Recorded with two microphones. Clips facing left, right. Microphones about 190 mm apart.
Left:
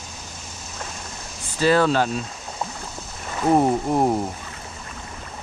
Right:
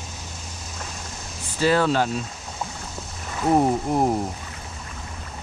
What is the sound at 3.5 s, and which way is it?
Speech, centre (ahead or behind).